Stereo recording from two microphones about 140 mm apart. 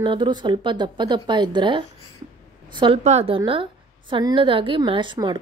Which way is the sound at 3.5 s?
35° right (ahead or behind).